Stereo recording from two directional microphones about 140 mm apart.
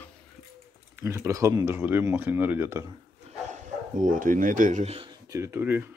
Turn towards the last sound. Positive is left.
turn(degrees=-15)  # may be behind; listen again after turning